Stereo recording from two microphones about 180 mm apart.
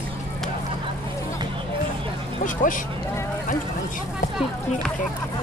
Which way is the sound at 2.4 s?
45° left (ahead or behind).